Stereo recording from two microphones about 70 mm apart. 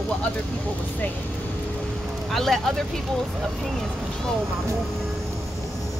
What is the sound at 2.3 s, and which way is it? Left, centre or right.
Speech, centre.